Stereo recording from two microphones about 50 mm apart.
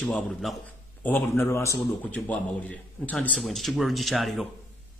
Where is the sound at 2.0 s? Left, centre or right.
Left.